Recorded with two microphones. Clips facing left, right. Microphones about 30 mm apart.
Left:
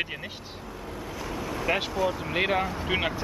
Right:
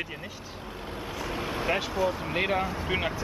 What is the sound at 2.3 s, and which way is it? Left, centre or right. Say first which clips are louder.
Speech: left 2 dB; centre.